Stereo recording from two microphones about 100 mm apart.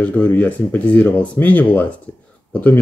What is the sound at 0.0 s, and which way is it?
Speech, 15° left (ahead or behind).